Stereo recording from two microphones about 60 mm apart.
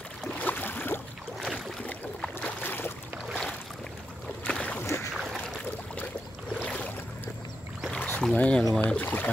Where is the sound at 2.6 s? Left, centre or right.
Left.